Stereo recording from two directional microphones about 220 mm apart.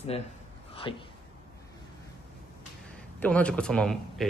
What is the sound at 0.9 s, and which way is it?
Speech, 20° left (ahead or behind).